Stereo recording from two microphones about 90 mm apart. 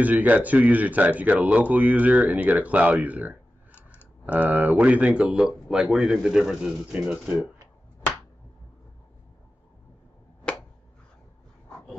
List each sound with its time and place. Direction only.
0.0 s speech: 20° right (ahead or behind)
3.7 s clicking: 25° left (ahead or behind)
4.3 s speech: 15° right (ahead or behind)
10.4 s a sound: 15° left (ahead or behind)